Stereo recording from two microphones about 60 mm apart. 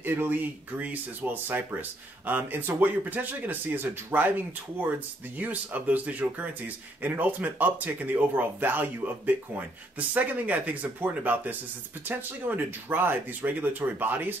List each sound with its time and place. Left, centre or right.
0.0 s speech: right
5.4 s speech: right